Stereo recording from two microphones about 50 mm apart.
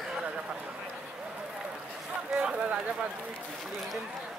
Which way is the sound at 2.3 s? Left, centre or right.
Right.